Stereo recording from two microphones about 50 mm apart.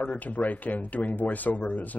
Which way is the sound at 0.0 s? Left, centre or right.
Left.